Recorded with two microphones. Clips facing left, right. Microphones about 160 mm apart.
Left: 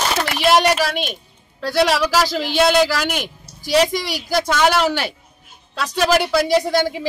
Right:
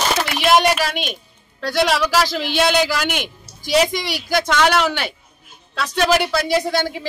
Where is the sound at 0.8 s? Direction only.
Centre (ahead or behind).